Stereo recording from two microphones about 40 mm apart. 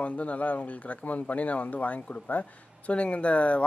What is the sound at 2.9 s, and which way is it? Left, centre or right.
Speech, left.